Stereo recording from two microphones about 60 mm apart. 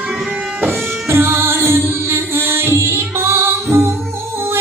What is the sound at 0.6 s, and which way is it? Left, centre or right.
Music, right.